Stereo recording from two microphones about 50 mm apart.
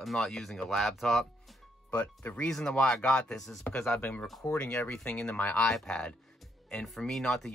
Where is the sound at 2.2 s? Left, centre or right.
Left.